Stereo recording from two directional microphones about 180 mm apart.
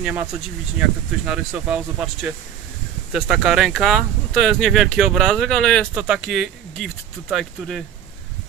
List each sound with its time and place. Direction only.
0.0 s speech: 10° right (ahead or behind)